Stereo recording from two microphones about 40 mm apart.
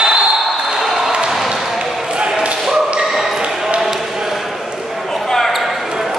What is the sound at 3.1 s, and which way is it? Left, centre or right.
Basketball bounce, centre.